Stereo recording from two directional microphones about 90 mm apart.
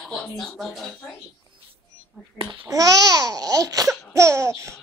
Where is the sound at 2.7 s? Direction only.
45° right (ahead or behind).